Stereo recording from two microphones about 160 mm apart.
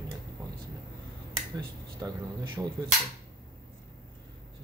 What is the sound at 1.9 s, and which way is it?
Speech, 25° right (ahead or behind).